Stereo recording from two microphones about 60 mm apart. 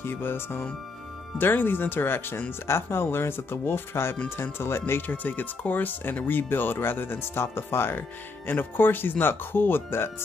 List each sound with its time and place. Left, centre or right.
0.0 s speech: left
5.0 s speech: left